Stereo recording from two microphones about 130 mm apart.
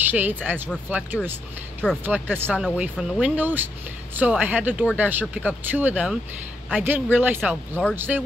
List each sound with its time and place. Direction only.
0.0 s speech: 15° right (ahead or behind)